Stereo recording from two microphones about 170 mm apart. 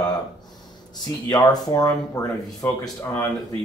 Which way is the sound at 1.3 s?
25° left (ahead or behind).